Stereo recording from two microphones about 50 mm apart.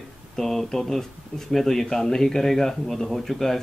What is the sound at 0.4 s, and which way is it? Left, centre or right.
Speech, centre.